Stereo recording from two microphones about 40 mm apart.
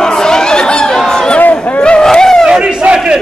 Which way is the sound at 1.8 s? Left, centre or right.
Left.